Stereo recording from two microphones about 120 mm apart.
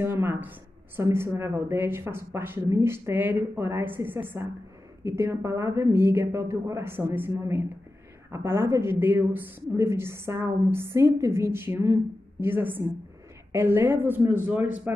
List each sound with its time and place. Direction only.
0.0 s a woman's voice: 20° right (ahead or behind)